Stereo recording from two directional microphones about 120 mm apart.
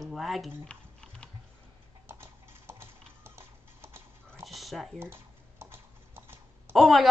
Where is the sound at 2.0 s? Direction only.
20° right (ahead or behind).